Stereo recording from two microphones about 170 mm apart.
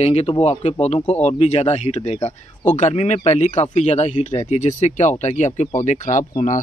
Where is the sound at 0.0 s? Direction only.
35° left (ahead or behind).